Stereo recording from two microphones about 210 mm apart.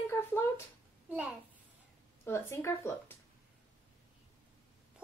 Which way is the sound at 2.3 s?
10° left (ahead or behind).